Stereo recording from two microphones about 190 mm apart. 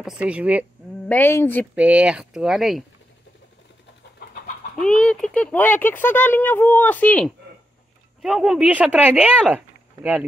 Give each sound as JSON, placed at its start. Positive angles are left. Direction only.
{"t": 0.0, "sound": "speech", "side_deg": -5}
{"t": 1.0, "sound": "speech", "side_deg": 10}
{"t": 1.8, "sound": "speech", "side_deg": -5}
{"t": 4.7, "sound": "speech", "side_deg": 5}